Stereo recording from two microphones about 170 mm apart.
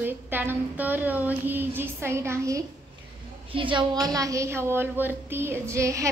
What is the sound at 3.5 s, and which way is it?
A woman's voice, 30° right (ahead or behind).